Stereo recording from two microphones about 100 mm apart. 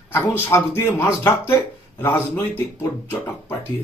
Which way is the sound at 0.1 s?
25° left (ahead or behind).